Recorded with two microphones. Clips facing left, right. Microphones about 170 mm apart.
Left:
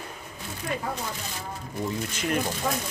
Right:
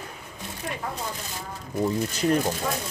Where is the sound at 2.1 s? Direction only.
35° right (ahead or behind).